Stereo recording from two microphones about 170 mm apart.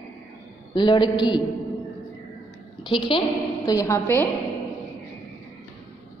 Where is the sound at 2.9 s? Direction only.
30° left (ahead or behind).